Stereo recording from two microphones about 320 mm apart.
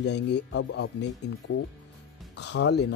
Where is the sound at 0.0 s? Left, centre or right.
Left.